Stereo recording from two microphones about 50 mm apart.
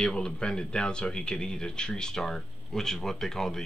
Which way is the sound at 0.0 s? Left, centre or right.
Centre.